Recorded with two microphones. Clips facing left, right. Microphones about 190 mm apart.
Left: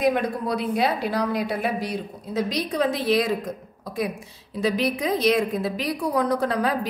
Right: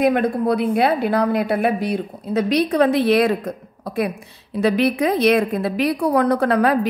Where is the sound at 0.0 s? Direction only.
55° right (ahead or behind).